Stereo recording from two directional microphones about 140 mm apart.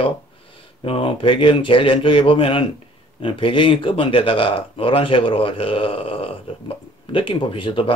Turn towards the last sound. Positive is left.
turn(degrees=40)  # may be behind; listen again after turning